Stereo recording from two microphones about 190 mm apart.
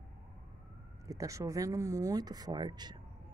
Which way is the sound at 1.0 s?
15° right (ahead or behind).